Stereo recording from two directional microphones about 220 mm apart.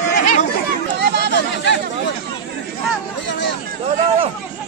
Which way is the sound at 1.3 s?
55° left (ahead or behind).